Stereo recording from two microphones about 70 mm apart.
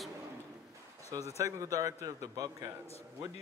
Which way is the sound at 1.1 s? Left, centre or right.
Right.